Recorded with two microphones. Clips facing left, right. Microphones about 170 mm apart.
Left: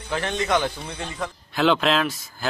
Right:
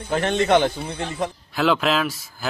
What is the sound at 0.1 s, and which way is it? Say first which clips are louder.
Speech: right 5 dB; 40° right (ahead or behind).